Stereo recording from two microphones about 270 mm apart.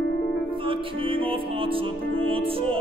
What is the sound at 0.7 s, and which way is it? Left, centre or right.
Music, centre.